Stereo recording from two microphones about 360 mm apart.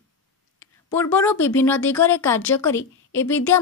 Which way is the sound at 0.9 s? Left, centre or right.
Centre.